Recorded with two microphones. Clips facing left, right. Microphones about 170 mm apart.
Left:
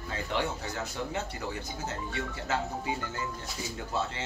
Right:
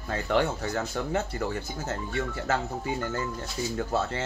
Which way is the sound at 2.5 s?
50° right (ahead or behind).